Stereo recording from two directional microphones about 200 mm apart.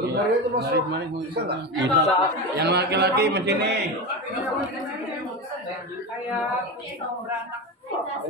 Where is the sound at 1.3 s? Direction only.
55° right (ahead or behind).